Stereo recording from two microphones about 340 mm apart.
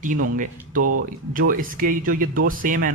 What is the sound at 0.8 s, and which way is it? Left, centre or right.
Speech, right.